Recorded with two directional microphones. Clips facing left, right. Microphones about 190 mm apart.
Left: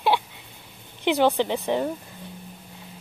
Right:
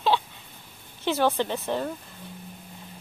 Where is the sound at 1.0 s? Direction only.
15° left (ahead or behind).